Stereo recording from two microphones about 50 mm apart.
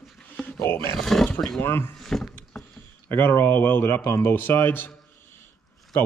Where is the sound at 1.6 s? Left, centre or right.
Left.